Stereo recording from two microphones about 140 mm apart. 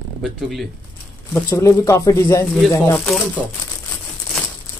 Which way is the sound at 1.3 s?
20° left (ahead or behind).